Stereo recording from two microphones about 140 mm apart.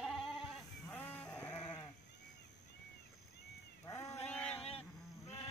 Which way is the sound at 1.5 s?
25° left (ahead or behind).